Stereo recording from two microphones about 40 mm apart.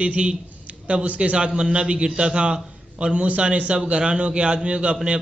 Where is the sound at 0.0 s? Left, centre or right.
Right.